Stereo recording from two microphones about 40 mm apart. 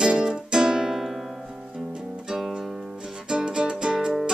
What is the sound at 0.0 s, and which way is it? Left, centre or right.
Music, centre.